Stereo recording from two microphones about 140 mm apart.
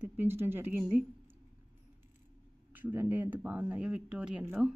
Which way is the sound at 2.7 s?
15° right (ahead or behind).